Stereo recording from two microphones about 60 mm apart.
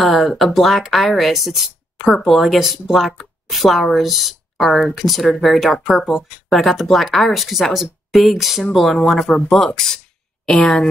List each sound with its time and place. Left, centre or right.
0.0 s speech: centre